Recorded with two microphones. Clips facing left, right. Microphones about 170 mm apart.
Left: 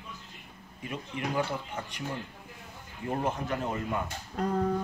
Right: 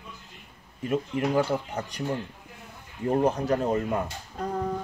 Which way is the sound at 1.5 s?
40° right (ahead or behind).